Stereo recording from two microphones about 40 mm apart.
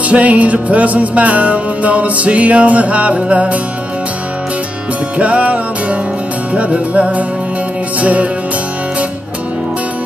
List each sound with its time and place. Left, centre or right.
0.1 s music: right
5.2 s music: right